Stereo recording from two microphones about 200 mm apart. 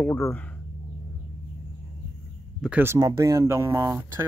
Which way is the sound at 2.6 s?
10° right (ahead or behind).